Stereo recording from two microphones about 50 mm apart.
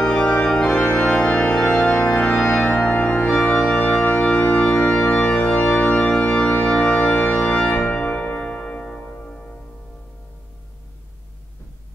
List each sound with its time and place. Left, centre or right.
0.0 s organ: centre
2.0 s music: left
2.3 s music: centre
3.0 s organ: left
7.8 s keyboard: centre
9.0 s music: left